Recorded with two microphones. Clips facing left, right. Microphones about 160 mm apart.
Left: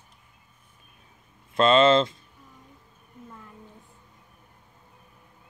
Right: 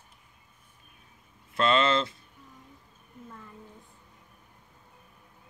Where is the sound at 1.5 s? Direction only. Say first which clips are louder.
Left 6 dB; 20° left (ahead or behind).